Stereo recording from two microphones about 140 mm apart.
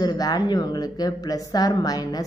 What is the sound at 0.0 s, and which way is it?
A woman's voice, 25° left (ahead or behind).